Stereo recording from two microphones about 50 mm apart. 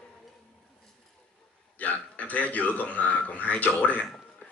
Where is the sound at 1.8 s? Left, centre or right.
Left.